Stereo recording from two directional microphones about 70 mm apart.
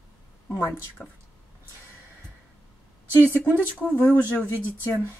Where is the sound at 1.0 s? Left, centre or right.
Centre.